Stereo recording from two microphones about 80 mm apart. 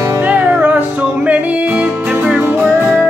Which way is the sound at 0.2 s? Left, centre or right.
Right.